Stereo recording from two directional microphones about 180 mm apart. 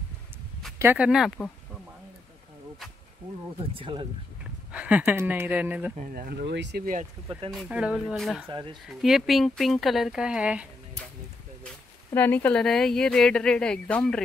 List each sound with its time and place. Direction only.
0.7 s speech: 10° right (ahead or behind)
3.7 s speech: 25° right (ahead or behind)
4.7 s speech: 5° right (ahead or behind)
5.9 s speech: 55° right (ahead or behind); by 6.8 s 75° right (ahead or behind)
7.2 s speech: 30° right (ahead or behind)
7.5 s speech: 5° right (ahead or behind)
8.5 s speech: 25° right (ahead or behind)
8.8 s speech: centre (ahead or behind)
11.6 s speech: 10° left (ahead or behind)